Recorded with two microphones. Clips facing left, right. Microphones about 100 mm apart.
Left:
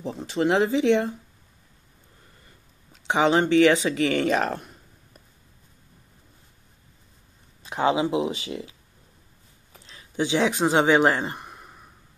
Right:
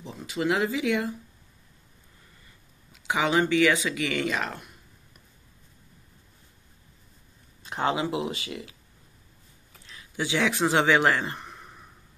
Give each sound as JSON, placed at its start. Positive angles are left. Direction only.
{"t": 0.0, "sound": "speech", "side_deg": 35}
{"t": 3.1, "sound": "speech", "side_deg": 30}
{"t": 7.7, "sound": "speech", "side_deg": 20}
{"t": 9.7, "sound": "a sound", "side_deg": 30}
{"t": 10.5, "sound": "speech", "side_deg": 20}